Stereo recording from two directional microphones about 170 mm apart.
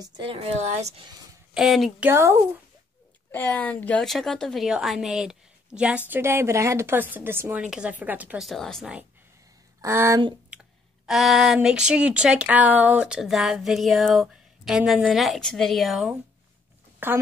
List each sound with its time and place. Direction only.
0.0 s a woman's voice: 35° right (ahead or behind)
1.5 s a woman's voice: centre (ahead or behind)
2.0 s speech: 15° right (ahead or behind)
3.3 s a woman's voice: 10° left (ahead or behind)
9.8 s speech: 15° right (ahead or behind)
11.1 s a woman's voice: centre (ahead or behind)
17.0 s speech: 15° right (ahead or behind)